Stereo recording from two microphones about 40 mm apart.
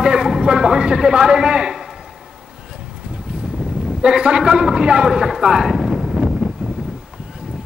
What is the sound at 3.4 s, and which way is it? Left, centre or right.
Vehicle, centre.